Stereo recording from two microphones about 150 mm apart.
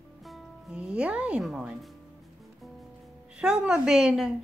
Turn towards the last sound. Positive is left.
turn(degrees=-5)  # may be behind; listen again after turning